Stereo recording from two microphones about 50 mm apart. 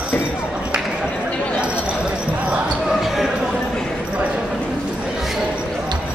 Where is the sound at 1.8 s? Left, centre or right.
Right.